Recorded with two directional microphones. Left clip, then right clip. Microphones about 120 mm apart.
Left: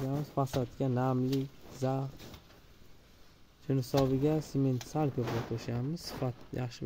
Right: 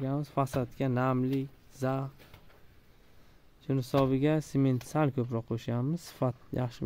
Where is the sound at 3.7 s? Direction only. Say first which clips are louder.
Right 1 dB; 10° right (ahead or behind).